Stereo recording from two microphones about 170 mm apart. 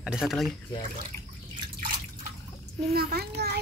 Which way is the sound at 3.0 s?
65° right (ahead or behind).